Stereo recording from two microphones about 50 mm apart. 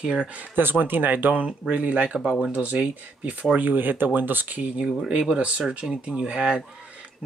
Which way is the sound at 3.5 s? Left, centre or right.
Right.